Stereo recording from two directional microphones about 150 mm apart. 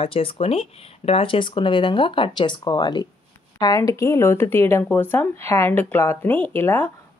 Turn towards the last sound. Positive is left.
turn(degrees=15)  # may be behind; listen again after turning